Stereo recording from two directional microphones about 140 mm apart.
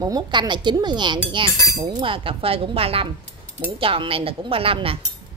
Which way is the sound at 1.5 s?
25° left (ahead or behind).